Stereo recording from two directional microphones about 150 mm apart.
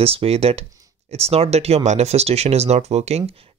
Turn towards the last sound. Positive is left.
turn(degrees=-45)  # may be behind; listen again after turning